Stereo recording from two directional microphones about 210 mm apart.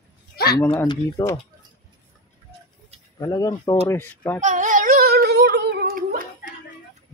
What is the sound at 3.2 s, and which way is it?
Speech, 15° left (ahead or behind).